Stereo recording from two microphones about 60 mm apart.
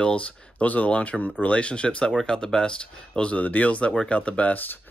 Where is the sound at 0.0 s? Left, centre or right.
Centre.